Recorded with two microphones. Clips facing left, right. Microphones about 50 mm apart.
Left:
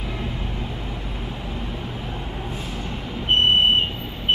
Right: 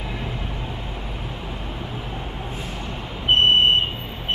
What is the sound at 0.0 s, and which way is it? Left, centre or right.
Vehicle, right.